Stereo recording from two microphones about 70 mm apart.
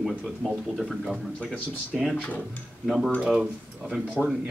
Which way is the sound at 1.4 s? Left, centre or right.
Left.